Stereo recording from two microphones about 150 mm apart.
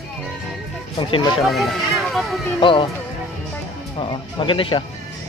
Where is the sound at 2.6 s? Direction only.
35° left (ahead or behind).